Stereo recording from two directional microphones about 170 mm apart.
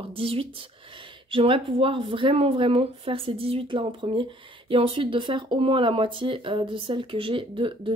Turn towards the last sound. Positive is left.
turn(degrees=-30)  # may be behind; listen again after turning